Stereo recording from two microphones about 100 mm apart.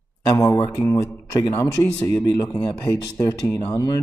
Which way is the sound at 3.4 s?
15° left (ahead or behind).